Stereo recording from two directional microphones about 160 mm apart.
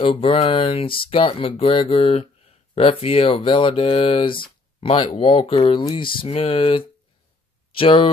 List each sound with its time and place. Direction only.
0.0 s speech: 35° left (ahead or behind)